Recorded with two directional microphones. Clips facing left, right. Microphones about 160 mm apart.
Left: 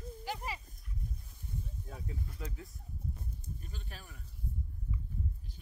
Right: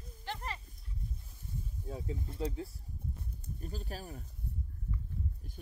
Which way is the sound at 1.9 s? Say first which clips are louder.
Right 6 dB; 25° right (ahead or behind).